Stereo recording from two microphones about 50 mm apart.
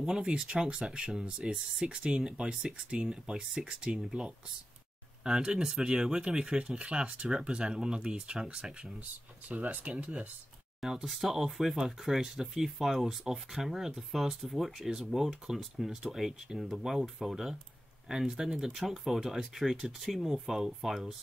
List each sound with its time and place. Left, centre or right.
0.0 s speech: centre
9.5 s speech: right
10.8 s speech: centre